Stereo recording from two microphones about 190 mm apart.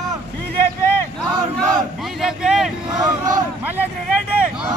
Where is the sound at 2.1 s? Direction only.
Centre (ahead or behind).